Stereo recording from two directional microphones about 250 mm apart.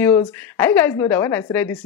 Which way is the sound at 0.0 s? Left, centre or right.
Centre.